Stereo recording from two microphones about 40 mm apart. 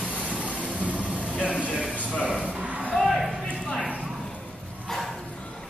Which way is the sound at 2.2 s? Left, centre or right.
Right.